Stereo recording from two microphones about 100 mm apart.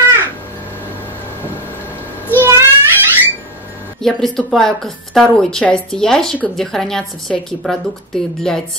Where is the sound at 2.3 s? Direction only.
25° right (ahead or behind).